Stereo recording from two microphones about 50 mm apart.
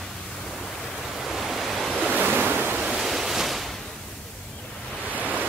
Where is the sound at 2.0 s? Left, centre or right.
Right.